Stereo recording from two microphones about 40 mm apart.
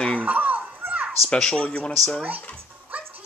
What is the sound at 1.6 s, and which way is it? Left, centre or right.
Speech, left.